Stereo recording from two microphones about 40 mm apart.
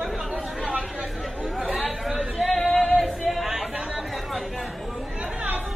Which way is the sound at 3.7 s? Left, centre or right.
Right.